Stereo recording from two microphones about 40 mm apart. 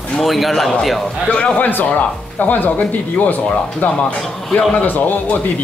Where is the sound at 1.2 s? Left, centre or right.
Left.